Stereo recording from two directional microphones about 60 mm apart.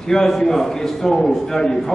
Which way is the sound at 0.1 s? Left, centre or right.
Centre.